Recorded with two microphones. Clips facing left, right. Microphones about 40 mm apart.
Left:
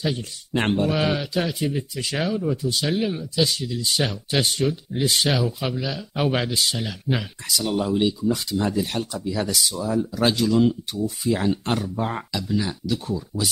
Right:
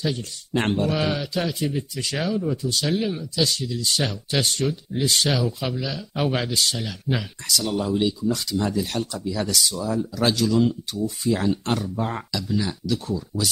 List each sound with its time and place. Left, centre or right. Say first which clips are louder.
0.0 s speech: even; centre